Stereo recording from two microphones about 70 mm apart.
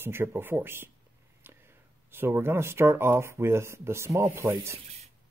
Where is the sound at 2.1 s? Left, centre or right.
Right.